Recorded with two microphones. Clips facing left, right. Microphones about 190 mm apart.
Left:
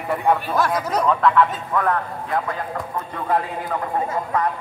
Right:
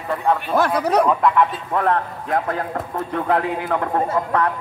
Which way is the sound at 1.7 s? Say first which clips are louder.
Right 4 dB; 30° right (ahead or behind).